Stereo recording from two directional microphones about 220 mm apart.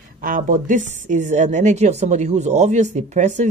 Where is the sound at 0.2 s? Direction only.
35° right (ahead or behind).